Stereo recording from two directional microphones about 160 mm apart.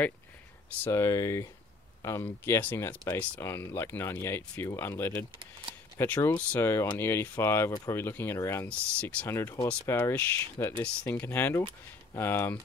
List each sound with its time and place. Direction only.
0.8 s speech: 20° left (ahead or behind)